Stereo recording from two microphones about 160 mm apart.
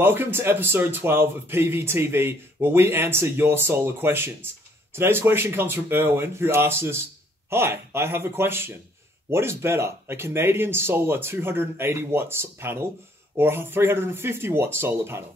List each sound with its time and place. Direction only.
0.0 s a man's voice: 15° right (ahead or behind)